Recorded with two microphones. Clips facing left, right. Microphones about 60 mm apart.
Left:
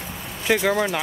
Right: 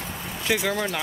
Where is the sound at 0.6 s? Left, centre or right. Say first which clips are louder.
Left 5 dB; centre.